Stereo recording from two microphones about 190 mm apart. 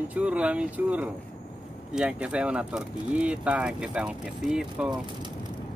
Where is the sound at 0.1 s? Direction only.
5° right (ahead or behind).